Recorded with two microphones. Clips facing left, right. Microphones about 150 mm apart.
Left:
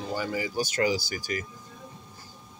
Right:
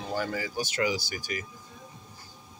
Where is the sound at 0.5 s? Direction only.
40° left (ahead or behind).